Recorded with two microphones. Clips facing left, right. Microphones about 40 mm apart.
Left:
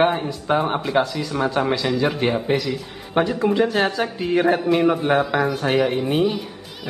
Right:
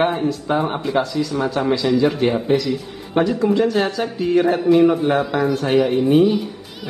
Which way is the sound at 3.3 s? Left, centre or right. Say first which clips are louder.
Right 3 dB; centre.